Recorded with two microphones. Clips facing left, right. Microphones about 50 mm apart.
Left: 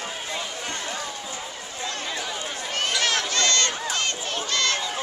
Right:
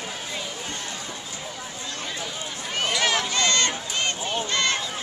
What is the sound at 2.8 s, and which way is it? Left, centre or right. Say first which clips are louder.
Run: right 1 dB; centre.